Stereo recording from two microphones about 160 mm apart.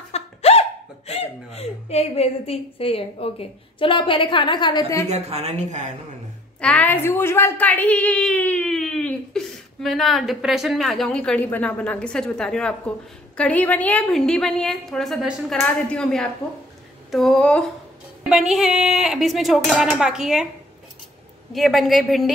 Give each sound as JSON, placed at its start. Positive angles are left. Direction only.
{"t": 0.1, "sound": "speech", "side_deg": 40}
{"t": 5.0, "sound": "a woman's voice", "side_deg": -40}
{"t": 6.6, "sound": "a woman's voice", "side_deg": 10}
{"t": 21.5, "sound": "a woman's voice", "side_deg": 0}